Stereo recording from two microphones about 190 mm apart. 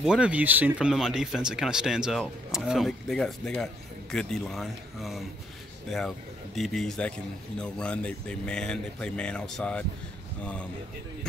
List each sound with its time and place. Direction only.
0.0 s speech: 5° right (ahead or behind)